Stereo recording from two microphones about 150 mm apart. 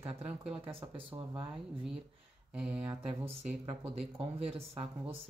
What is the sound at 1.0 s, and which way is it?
Speech, 35° right (ahead or behind).